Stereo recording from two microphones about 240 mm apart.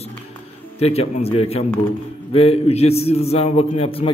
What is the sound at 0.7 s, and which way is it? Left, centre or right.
A man's voice, left.